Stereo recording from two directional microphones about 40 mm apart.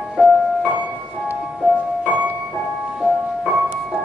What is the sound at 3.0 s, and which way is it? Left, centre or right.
Music, centre.